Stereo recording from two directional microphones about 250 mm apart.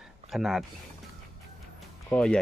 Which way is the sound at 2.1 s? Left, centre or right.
Centre.